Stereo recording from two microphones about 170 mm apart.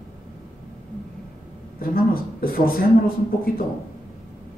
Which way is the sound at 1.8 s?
60° left (ahead or behind).